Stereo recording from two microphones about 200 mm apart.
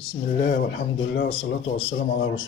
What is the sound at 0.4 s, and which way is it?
Speech, 55° left (ahead or behind).